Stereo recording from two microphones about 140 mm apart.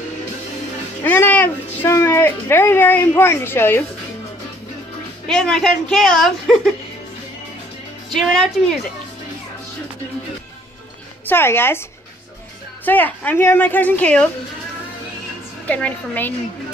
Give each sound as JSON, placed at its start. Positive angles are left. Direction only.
{"t": 1.0, "sound": "speech", "side_deg": 15}
{"t": 5.2, "sound": "speech", "side_deg": 5}
{"t": 8.1, "sound": "speech", "side_deg": 5}
{"t": 11.2, "sound": "a woman's voice", "side_deg": 15}
{"t": 12.8, "sound": "a woman's voice", "side_deg": 10}
{"t": 15.6, "sound": "a woman's voice", "side_deg": 10}